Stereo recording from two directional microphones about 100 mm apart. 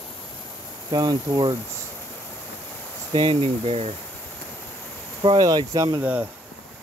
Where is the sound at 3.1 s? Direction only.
65° right (ahead or behind); by 3.9 s 85° right.